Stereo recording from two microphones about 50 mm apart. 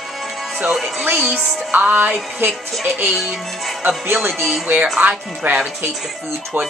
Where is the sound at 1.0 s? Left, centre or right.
Right.